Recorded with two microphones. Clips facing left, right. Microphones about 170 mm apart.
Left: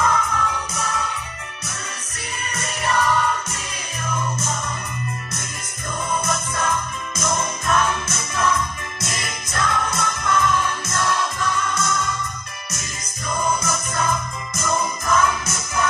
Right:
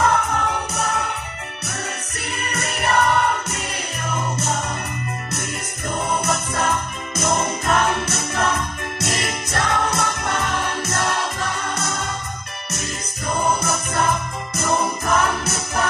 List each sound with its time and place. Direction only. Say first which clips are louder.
0.0 s music: right 2 dB; 60° right (ahead or behind)
2.4 s music: right 2 dB; 65° right (ahead or behind)
6.0 s music: right 1 dB; 65° right (ahead or behind)
13.3 s music: right 2 dB; 60° right (ahead or behind)